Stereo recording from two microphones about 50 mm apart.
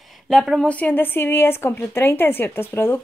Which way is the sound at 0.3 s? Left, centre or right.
Centre.